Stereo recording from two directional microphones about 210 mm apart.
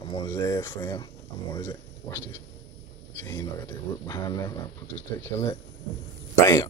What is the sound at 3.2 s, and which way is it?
Speech, 20° left (ahead or behind).